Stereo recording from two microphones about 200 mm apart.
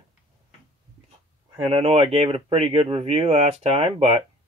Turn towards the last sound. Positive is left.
turn(degrees=-30)  # may be behind; listen again after turning